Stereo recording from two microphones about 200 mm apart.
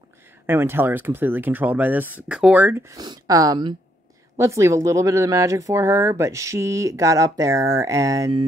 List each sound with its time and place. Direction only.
0.5 s speech: 10° right (ahead or behind)